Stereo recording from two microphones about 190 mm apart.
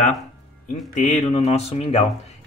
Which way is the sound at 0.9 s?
35° left (ahead or behind).